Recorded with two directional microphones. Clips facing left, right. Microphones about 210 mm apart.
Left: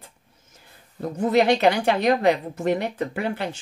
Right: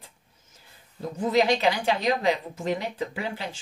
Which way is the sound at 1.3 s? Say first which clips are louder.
Left 4 dB; 60° left (ahead or behind).